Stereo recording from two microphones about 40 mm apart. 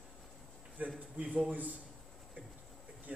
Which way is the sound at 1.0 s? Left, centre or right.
Right.